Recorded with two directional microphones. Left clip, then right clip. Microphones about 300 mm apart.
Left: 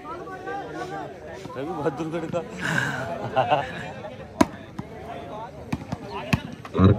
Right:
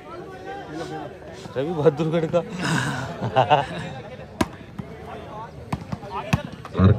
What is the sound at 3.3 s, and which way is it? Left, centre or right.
Speech, right.